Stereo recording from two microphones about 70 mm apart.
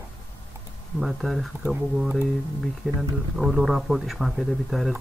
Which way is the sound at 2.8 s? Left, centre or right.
Centre.